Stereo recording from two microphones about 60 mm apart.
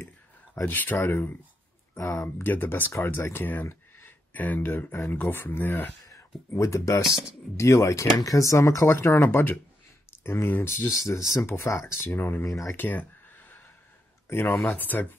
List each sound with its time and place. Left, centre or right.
0.7 s speech: left
2.0 s speech: left
2.2 s speech: left
6.1 s speech: left
8.8 s speech: left
10.8 s speech: left
12.1 s speech: left
12.4 s speech: left
12.7 s a sound: left
14.3 s speech: left